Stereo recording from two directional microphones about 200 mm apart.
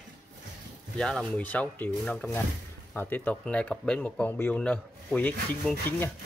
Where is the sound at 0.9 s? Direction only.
5° left (ahead or behind).